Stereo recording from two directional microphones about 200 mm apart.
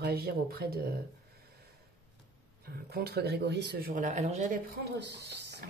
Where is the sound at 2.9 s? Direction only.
55° right (ahead or behind); by 4.6 s 35° right (ahead or behind).